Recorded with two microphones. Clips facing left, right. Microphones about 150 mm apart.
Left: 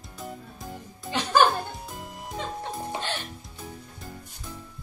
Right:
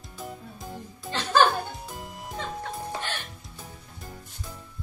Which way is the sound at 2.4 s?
20° left (ahead or behind).